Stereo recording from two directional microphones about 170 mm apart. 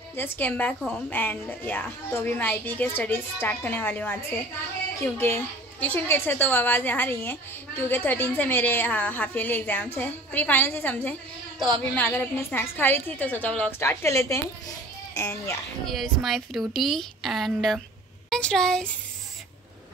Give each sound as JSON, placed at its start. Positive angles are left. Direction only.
{"t": 0.1, "sound": "a woman's voice", "side_deg": 10}
{"t": 15.9, "sound": "a woman's voice", "side_deg": 0}